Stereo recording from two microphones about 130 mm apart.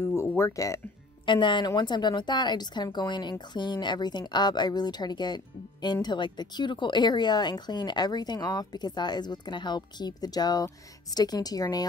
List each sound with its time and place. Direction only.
0.0 s music: 20° left (ahead or behind)
1.2 s speech: 35° left (ahead or behind)